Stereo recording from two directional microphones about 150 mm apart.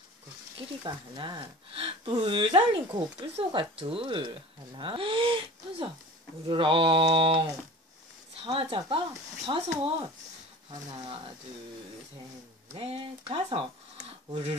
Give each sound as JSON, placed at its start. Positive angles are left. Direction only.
{"t": 0.6, "sound": "speech", "side_deg": -30}
{"t": 12.7, "sound": "speech", "side_deg": -40}